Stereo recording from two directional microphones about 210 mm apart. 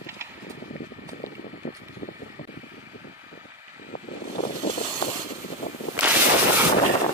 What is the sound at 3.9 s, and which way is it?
Vehicle, 45° left (ahead or behind).